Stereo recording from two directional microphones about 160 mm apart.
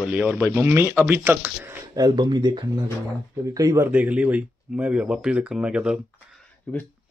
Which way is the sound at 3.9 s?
10° right (ahead or behind).